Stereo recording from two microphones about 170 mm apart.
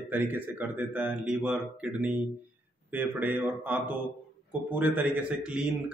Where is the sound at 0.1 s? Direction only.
10° right (ahead or behind).